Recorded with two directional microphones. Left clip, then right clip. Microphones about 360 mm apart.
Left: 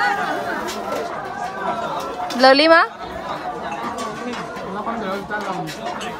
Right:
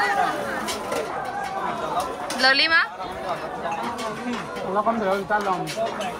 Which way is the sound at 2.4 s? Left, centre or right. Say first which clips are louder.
Left 7 dB; centre.